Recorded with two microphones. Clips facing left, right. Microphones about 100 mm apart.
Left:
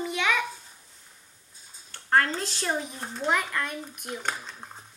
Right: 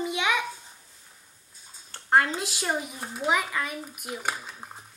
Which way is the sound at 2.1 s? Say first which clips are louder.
Right 1 dB; 15° right (ahead or behind).